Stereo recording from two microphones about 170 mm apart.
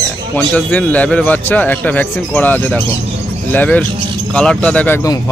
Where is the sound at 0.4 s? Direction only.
10° left (ahead or behind).